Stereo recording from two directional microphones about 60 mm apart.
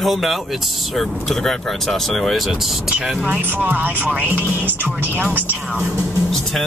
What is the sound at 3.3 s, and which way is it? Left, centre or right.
Speech, right.